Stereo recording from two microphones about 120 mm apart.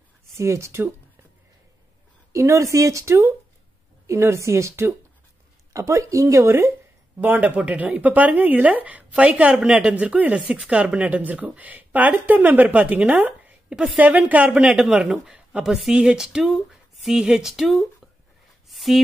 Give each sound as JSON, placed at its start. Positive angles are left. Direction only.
{"t": 0.4, "sound": "speech", "side_deg": -25}
{"t": 2.3, "sound": "speech", "side_deg": -25}